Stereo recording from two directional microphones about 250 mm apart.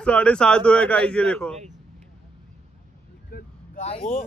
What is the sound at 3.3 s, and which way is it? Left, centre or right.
Vehicle, left.